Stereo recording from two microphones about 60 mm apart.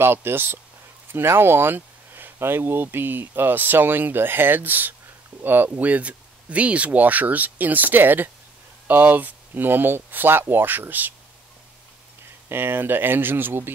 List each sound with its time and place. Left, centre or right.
0.0 s speech: right
12.4 s speech: right